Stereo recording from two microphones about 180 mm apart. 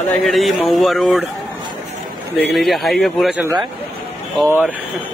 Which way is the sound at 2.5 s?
Centre (ahead or behind).